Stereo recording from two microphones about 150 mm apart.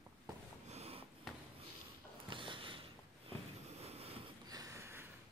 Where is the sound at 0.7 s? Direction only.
45° right (ahead or behind).